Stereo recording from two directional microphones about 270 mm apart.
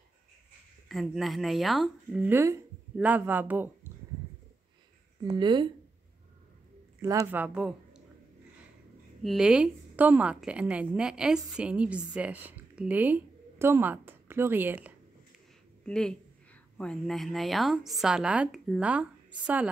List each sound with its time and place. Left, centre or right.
0.8 s a woman's voice: centre
5.2 s a man's voice: centre
7.0 s speech: centre
9.2 s a woman's voice: centre